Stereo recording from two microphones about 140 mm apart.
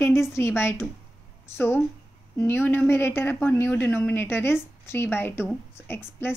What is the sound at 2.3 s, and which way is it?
A woman's voice, 15° left (ahead or behind).